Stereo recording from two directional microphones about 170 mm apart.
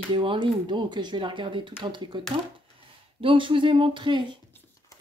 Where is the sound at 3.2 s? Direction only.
30° right (ahead or behind).